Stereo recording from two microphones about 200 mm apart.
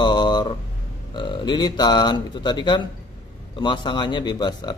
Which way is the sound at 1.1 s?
25° left (ahead or behind).